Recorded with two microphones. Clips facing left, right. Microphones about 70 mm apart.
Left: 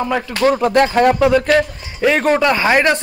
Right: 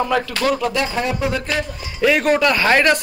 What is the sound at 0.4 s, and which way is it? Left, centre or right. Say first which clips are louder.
Speech: left 6 dB; left.